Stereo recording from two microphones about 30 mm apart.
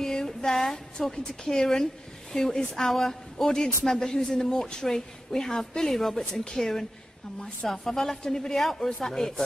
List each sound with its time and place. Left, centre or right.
0.0 s music: left
1.1 s a woman's voice: left
2.7 s a woman's voice: centre